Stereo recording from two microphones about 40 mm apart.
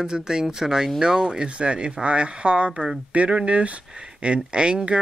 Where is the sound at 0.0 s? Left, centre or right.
Centre.